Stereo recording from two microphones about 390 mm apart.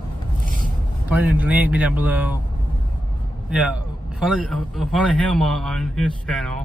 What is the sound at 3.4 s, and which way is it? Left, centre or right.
A man's voice, centre.